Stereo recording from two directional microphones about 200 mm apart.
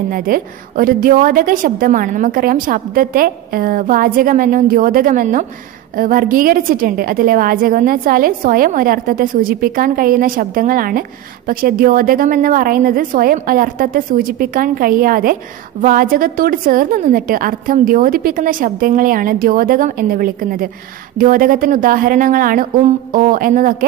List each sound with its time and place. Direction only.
0.1 s a woman's voice: 45° right (ahead or behind)